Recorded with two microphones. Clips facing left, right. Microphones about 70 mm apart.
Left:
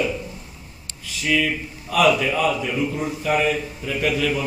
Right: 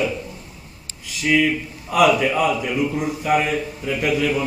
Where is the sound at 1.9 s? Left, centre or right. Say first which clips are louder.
Right 2 dB; centre.